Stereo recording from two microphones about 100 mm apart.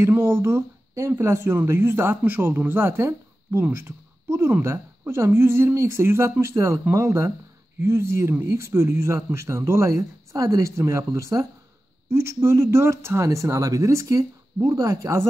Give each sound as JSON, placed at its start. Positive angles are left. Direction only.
{"t": 0.0, "sound": "speech", "side_deg": -20}